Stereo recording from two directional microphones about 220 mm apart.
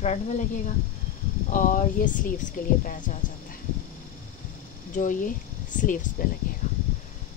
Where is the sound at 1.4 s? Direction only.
35° left (ahead or behind).